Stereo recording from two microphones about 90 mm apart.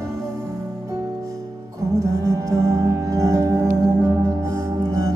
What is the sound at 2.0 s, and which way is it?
Music, 35° right (ahead or behind).